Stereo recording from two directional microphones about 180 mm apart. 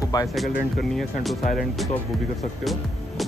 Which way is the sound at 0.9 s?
Centre (ahead or behind).